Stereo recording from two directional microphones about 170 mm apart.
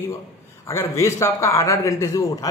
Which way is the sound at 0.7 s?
15° left (ahead or behind).